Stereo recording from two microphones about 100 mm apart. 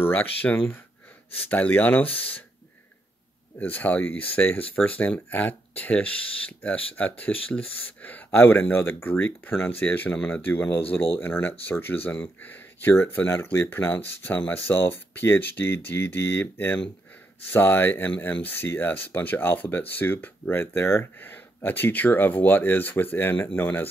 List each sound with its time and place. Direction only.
0.0 s speech: 20° left (ahead or behind)
3.5 s speech: 15° left (ahead or behind)